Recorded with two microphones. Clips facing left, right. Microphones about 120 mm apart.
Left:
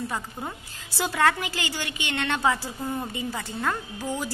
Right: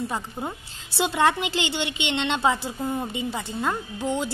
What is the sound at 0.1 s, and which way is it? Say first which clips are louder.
A woman's voice: right 2 dB; 20° right (ahead or behind).